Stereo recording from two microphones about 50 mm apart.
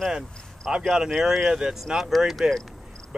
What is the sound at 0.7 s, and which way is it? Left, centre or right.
Speech, centre.